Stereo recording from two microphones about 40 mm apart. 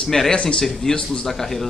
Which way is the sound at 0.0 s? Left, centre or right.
Centre.